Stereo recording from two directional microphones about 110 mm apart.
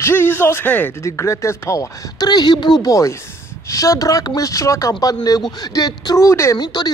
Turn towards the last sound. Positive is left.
turn(degrees=40)  # may be behind; listen again after turning